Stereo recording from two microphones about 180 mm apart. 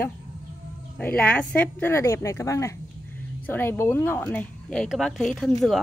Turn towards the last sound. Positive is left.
turn(degrees=0)  # may be behind; listen again after turning